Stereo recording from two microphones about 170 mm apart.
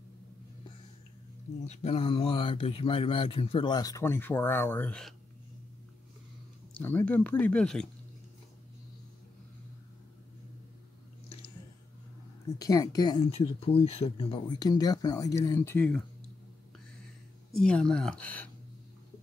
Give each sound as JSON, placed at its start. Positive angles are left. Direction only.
{"t": 1.7, "sound": "speech", "side_deg": 35}
{"t": 6.7, "sound": "speech", "side_deg": 10}
{"t": 12.5, "sound": "speech", "side_deg": 20}
{"t": 17.6, "sound": "speech", "side_deg": 5}